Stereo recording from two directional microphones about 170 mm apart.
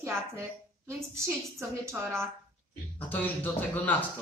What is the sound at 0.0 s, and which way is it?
A woman's voice, 15° right (ahead or behind).